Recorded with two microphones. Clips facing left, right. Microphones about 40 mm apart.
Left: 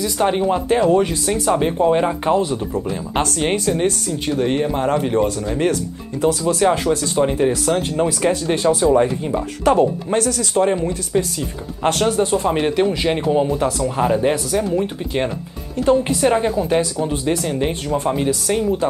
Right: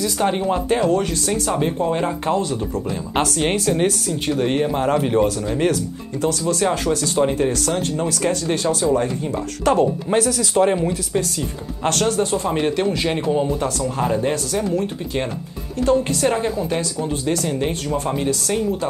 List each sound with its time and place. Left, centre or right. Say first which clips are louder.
0.0 s speech: left 2 dB; centre
11.1 s speech: left 2 dB; centre
17.4 s speech: left 1 dB; centre